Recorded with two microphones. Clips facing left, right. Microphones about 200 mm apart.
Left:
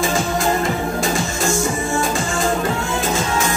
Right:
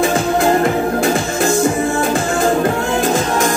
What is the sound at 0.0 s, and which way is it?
Music, 60° right (ahead or behind).